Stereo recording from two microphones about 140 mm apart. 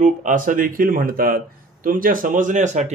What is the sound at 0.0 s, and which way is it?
Speech, 65° right (ahead or behind).